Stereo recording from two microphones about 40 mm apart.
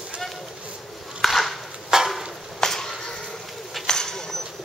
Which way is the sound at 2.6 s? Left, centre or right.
Centre.